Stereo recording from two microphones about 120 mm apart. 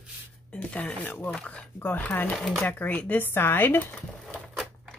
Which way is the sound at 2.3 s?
Centre (ahead or behind).